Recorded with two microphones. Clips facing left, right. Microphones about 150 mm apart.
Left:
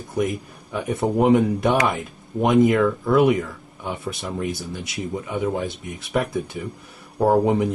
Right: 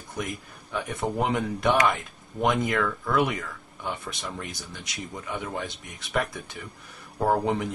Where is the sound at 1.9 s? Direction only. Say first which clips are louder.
Left 2 dB; 5° left (ahead or behind).